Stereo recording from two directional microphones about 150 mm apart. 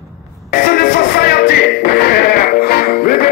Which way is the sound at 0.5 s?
65° left (ahead or behind).